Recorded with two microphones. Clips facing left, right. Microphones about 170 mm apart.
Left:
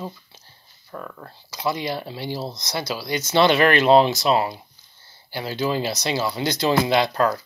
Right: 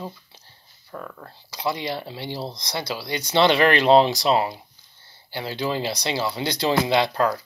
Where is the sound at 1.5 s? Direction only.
30° right (ahead or behind).